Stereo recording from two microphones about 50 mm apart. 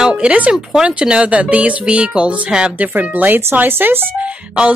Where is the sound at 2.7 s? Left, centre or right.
Right.